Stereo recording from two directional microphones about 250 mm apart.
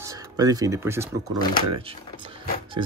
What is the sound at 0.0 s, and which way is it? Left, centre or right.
Speech, centre.